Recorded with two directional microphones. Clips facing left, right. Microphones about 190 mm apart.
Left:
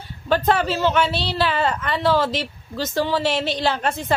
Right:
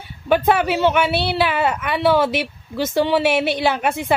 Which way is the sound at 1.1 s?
60° right (ahead or behind).